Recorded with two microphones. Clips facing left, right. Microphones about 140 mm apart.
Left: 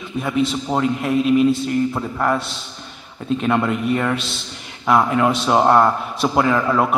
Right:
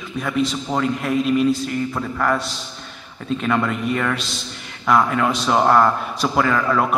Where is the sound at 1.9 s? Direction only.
15° left (ahead or behind).